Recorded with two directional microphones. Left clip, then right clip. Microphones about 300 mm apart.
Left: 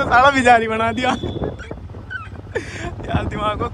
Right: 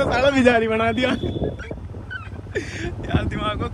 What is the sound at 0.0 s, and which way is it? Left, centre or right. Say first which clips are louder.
Speech: left 4 dB; centre.